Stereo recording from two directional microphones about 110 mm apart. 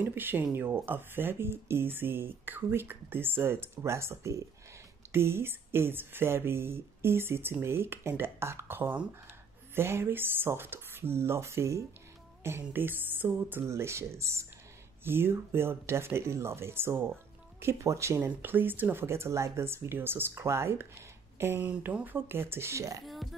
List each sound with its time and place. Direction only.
0.0 s speech: 20° right (ahead or behind)